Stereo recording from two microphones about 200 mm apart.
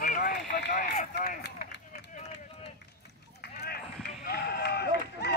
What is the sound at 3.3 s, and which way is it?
Run, 50° left (ahead or behind).